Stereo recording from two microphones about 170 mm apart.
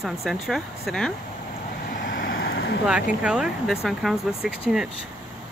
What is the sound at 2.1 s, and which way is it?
Vehicle, 60° left (ahead or behind).